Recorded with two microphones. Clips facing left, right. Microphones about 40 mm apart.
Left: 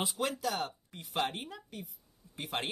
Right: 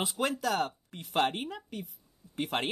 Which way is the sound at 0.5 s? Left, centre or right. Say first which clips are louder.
Right 5 dB; right.